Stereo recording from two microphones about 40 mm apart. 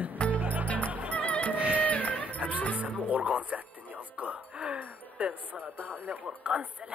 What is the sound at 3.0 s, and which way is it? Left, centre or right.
Music, right.